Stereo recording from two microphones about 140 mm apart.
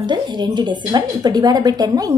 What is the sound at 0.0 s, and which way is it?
A woman's voice, 30° right (ahead or behind).